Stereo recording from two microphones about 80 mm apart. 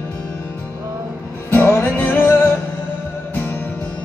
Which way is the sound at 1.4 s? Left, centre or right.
Left.